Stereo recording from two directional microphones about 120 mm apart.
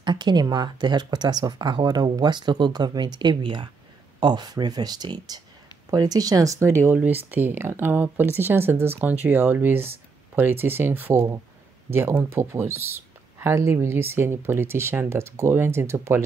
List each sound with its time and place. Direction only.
0.0 s speech: 40° right (ahead or behind); by 16.2 s 20° right (ahead or behind)